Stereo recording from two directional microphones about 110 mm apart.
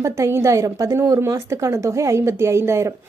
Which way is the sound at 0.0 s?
25° right (ahead or behind).